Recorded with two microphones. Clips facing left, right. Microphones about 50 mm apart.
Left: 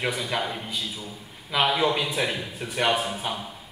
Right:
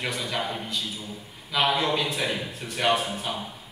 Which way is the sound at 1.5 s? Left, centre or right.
Centre.